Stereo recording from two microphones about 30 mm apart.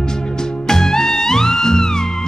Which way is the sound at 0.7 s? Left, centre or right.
Centre.